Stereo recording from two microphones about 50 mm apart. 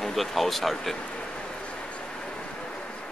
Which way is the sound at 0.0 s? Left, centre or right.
Centre.